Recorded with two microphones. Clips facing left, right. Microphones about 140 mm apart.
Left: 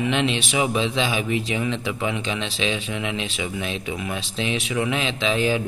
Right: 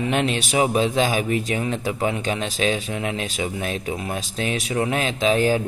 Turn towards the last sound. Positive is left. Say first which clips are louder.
# right 3 dB
turn(degrees=-45)  # may be behind; listen again after turning